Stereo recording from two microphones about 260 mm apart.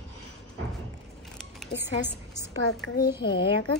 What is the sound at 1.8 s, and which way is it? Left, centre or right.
Speech, centre.